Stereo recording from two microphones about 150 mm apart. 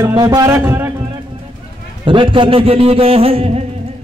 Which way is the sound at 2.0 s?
35° right (ahead or behind).